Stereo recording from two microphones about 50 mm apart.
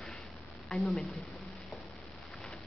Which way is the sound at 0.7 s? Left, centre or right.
Centre.